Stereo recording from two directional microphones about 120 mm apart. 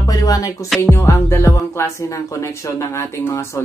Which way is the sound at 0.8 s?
20° left (ahead or behind).